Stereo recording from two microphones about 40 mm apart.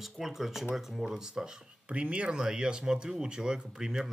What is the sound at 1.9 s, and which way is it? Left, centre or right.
Speech, right.